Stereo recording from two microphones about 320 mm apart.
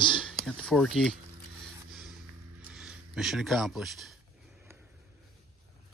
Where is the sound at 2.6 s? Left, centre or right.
Centre.